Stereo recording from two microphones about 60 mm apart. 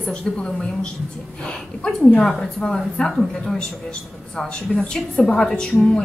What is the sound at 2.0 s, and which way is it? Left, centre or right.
A woman's voice, centre.